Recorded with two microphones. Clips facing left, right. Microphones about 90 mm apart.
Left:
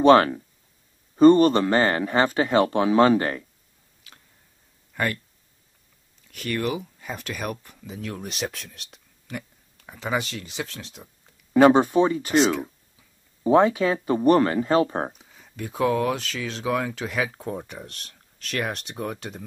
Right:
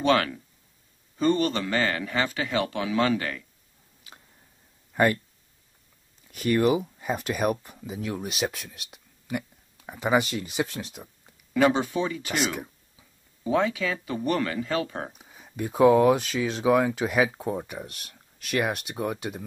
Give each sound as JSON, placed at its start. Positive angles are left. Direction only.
{"t": 0.0, "sound": "a man's voice", "side_deg": 40}
{"t": 4.9, "sound": "speech", "side_deg": -20}
{"t": 6.2, "sound": "speech", "side_deg": -20}
{"t": 11.5, "sound": "speech", "side_deg": 45}
{"t": 13.4, "sound": "a man's voice", "side_deg": 40}
{"t": 15.1, "sound": "speech", "side_deg": -15}